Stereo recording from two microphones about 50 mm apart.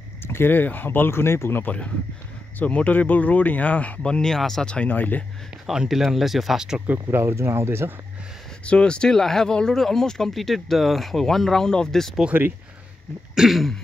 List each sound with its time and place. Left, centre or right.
0.2 s speech: left
2.6 s speech: left
4.0 s speech: centre
4.6 s speech: left
4.9 s speech: left
5.7 s speech: centre
6.9 s speech: right
8.6 s speech: left
12.3 s speech: right
13.3 s throat clearing: centre